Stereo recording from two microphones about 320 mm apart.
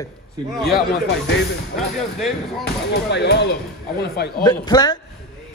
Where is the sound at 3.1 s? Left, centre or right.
Left.